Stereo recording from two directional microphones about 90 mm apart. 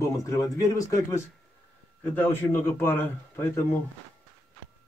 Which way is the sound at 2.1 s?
25° left (ahead or behind).